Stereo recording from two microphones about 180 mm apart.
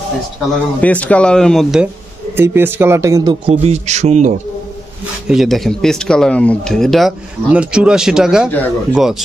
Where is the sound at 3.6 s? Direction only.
40° right (ahead or behind).